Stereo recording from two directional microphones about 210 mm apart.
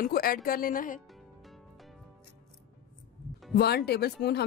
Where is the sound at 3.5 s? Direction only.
50° left (ahead or behind).